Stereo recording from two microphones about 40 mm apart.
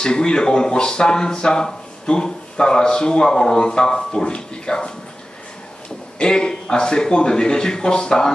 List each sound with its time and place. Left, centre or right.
0.0 s speech: centre
6.1 s speech: left